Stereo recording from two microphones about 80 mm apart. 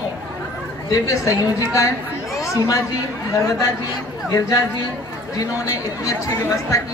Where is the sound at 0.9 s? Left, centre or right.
Left.